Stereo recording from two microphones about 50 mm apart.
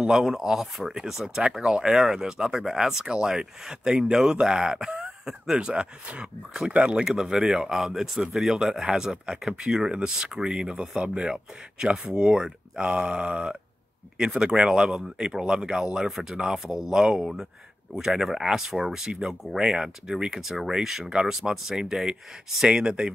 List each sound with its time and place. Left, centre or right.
0.0 s speech: centre
6.9 s speech: centre